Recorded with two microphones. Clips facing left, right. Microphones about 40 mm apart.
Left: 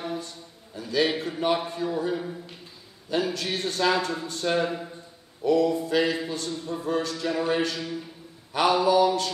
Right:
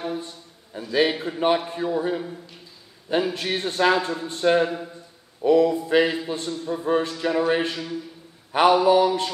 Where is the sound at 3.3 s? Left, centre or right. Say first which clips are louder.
Right 4 dB; right.